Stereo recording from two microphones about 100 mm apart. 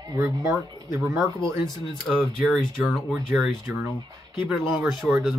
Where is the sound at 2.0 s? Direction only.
Centre (ahead or behind).